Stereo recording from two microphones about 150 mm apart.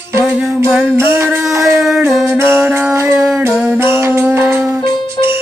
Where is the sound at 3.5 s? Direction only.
5° right (ahead or behind).